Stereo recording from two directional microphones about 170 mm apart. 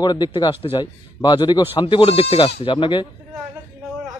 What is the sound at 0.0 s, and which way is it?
Speech, 25° left (ahead or behind).